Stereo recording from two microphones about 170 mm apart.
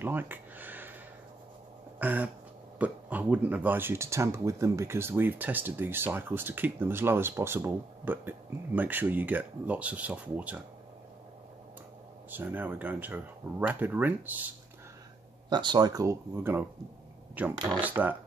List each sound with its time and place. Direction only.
0.0 s a sound: 10° right (ahead or behind)
2.0 s a sound: 10° right (ahead or behind)
2.8 s speech: 10° right (ahead or behind)
12.3 s speech: 10° right (ahead or behind)
15.5 s speech: 25° right (ahead or behind)
17.8 s speech: 10° right (ahead or behind)